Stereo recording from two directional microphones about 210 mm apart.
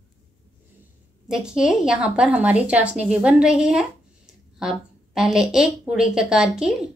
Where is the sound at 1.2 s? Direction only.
5° right (ahead or behind).